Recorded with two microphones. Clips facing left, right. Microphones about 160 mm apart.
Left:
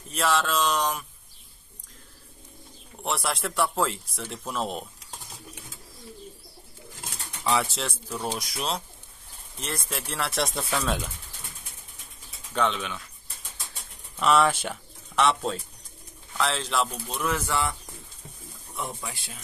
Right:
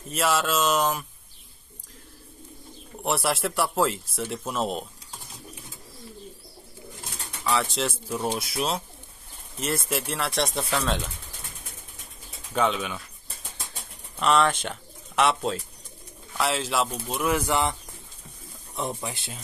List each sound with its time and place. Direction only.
0.1 s speech: 5° right (ahead or behind)
3.0 s speech: 5° right (ahead or behind)
7.6 s speech: centre (ahead or behind)
12.5 s speech: 5° right (ahead or behind)
14.2 s speech: 5° left (ahead or behind); by 17.7 s 20° right (ahead or behind)
18.8 s speech: 25° right (ahead or behind)